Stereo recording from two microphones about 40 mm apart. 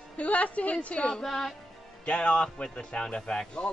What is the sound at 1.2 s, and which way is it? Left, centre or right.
Speech, centre.